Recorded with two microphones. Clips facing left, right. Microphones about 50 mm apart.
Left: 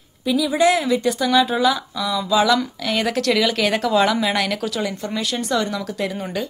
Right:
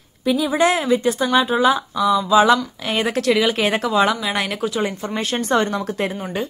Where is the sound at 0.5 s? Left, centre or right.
Right; by 4.6 s centre.